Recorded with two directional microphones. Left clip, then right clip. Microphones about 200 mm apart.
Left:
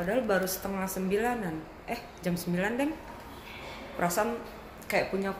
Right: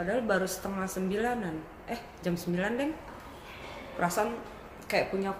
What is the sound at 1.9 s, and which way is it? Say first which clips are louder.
Speech: even; 5° left (ahead or behind).